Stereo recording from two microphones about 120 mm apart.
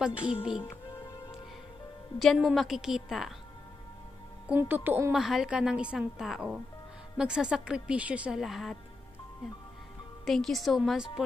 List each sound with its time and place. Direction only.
0.2 s speech: 50° left (ahead or behind)
2.1 s a woman's voice: centre (ahead or behind)
4.5 s speech: 15° right (ahead or behind)
5.1 s a woman's voice: 5° right (ahead or behind)
10.2 s a woman's voice: centre (ahead or behind)